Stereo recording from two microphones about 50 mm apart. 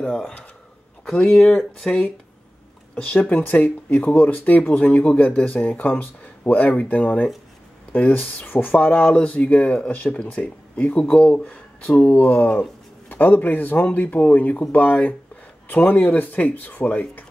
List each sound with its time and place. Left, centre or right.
0.0 s speech: centre
1.8 s speech: centre
3.0 s speech: left
8.5 s speech: left
14.0 s speech: left